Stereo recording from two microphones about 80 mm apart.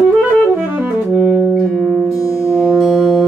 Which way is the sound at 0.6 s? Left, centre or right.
Right.